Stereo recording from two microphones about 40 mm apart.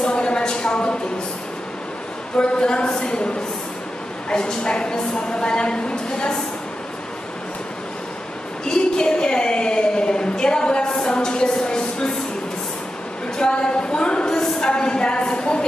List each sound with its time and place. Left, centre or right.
0.0 s a sound: left
2.3 s a woman's voice: left
4.3 s a woman's voice: left
8.6 s a sound: centre
13.4 s a woman's voice: left
14.7 s a woman's voice: left